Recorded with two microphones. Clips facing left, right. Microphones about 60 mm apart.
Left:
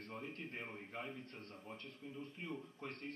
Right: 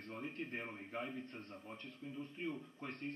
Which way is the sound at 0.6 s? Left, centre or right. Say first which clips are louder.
Right 3 dB; centre.